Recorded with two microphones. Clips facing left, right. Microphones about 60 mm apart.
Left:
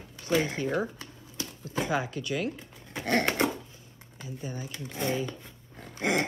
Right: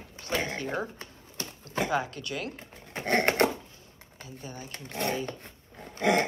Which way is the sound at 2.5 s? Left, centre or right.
Right.